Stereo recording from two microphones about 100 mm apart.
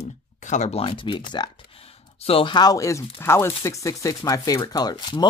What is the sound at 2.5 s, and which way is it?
Speech, 35° left (ahead or behind).